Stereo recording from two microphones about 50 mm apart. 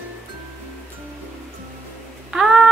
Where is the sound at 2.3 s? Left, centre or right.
Centre.